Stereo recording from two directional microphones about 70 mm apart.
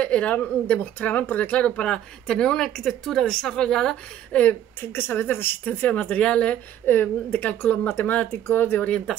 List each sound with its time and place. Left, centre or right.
0.0 s speech: centre
4.9 s speech: left